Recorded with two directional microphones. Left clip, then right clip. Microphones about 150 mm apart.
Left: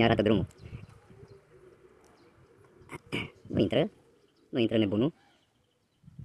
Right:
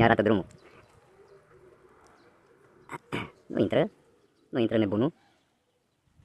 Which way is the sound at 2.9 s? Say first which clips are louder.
Right 1 dB; 5° left (ahead or behind).